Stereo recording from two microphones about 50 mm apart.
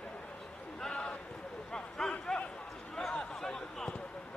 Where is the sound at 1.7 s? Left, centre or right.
Centre.